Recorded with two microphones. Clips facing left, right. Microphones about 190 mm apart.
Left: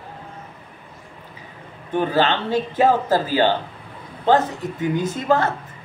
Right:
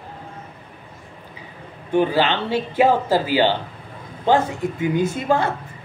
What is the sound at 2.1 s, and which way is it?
A woman's voice, 10° right (ahead or behind).